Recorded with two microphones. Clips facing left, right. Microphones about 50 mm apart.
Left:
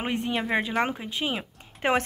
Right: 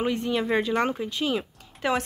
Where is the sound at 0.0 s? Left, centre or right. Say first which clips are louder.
Right 3 dB; left.